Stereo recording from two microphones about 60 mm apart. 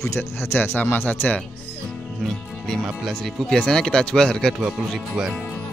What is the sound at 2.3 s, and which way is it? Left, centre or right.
Speech, centre.